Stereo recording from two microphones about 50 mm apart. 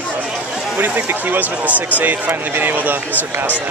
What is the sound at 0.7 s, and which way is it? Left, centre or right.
Speech, right.